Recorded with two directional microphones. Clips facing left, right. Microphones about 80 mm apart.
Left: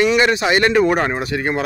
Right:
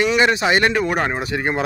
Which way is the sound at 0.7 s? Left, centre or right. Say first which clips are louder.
Left 4 dB; centre.